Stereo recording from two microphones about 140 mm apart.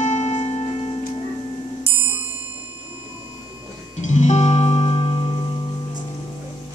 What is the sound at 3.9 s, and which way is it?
Music, 55° left (ahead or behind).